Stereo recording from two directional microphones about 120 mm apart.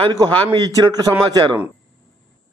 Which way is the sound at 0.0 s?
40° right (ahead or behind).